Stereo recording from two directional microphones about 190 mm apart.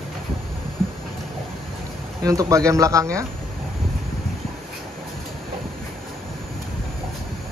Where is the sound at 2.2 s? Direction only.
15° right (ahead or behind).